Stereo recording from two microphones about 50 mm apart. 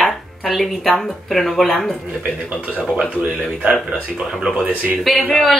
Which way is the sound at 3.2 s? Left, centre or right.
Right.